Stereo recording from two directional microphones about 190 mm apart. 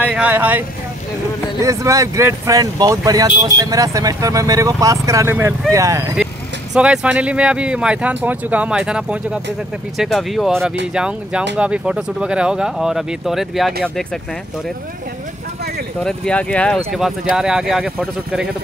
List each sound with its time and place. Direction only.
0.0 s speech: 10° right (ahead or behind)
6.7 s speech: 5° right (ahead or behind)
16.0 s speech: 5° left (ahead or behind)